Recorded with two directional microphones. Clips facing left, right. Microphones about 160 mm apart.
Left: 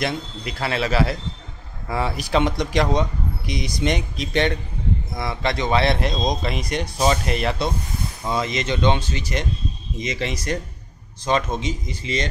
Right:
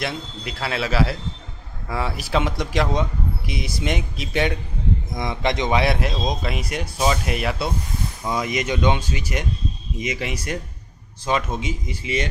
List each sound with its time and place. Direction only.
0.0 s speech: centre (ahead or behind)